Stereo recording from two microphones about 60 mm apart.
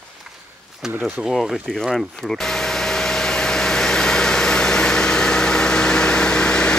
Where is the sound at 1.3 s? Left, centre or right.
Centre.